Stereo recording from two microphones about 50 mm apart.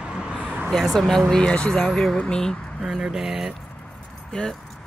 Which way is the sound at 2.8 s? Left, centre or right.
Centre.